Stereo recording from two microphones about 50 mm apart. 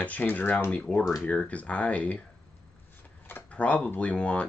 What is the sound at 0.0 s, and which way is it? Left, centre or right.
Speech, left.